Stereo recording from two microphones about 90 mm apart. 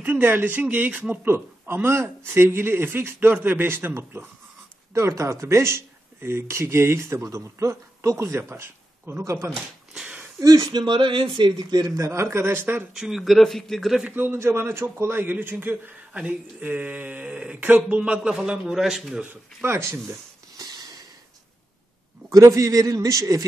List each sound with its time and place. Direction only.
0.0 s a man's voice: 20° right (ahead or behind)
10.4 s speech: 40° right (ahead or behind); by 11.6 s 65° right (ahead or behind)
12.0 s a man's voice: 30° right (ahead or behind)
12.9 s speech: 5° right (ahead or behind)
14.0 s a man's voice: 20° right (ahead or behind); by 19.2 s 5° right (ahead or behind)
19.6 s a man's voice: 30° right (ahead or behind)
20.5 s a sound: 50° right (ahead or behind)
22.3 s speech: 35° right (ahead or behind)